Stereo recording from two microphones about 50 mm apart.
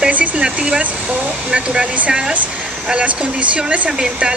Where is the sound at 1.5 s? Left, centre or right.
Centre.